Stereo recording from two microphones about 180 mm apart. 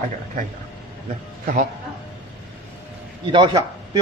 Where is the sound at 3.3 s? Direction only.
25° right (ahead or behind).